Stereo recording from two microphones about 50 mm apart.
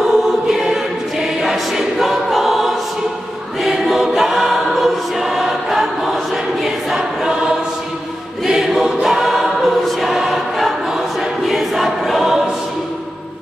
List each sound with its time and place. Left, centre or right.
0.0 s choir: centre
7.0 s choir: centre
11.1 s choir: centre